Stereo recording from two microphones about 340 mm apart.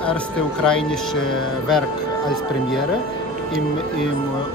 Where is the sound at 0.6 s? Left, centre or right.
Centre.